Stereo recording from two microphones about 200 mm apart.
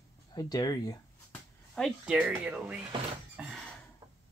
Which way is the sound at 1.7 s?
5° left (ahead or behind).